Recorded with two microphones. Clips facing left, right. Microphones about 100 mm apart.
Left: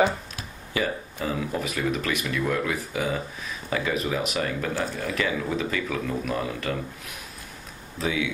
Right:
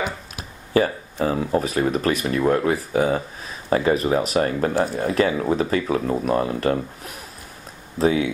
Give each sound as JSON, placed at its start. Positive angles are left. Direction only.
{"t": 0.7, "sound": "speech", "side_deg": -40}
{"t": 8.0, "sound": "speech", "side_deg": -40}